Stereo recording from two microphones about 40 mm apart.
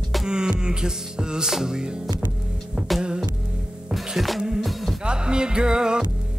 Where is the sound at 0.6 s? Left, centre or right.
Centre.